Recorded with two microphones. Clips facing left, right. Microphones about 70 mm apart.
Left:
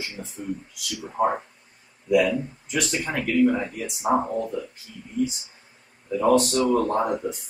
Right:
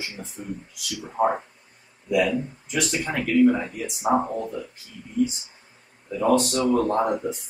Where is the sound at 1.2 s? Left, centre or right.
Right.